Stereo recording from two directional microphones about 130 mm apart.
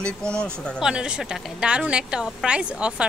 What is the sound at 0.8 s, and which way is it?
A woman's voice, 5° right (ahead or behind).